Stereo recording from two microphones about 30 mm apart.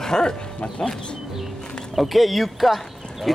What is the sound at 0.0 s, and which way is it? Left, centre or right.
Speech, left.